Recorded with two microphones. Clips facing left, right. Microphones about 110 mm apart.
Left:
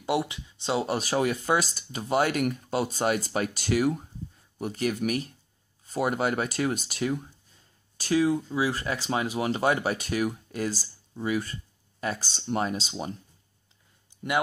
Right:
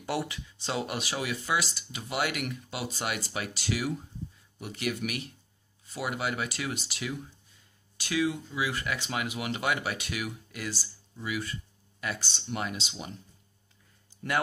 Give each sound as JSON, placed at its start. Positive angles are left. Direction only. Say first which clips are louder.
{"t": 0.0, "sound": "speech", "louder": "left 5 dB", "side_deg": 20}